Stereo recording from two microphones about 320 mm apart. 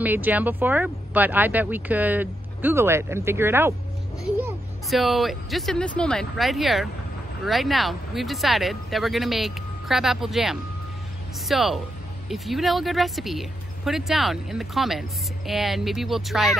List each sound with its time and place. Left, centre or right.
0.0 s speech: centre